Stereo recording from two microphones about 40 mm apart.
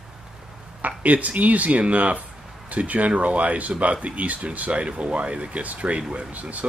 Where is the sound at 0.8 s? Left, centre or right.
Right.